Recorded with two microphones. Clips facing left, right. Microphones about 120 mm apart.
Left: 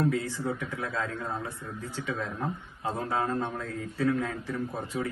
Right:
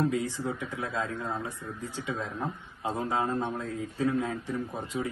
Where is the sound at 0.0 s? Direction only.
15° right (ahead or behind).